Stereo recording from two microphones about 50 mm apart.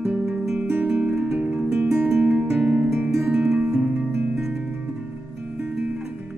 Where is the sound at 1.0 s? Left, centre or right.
Right.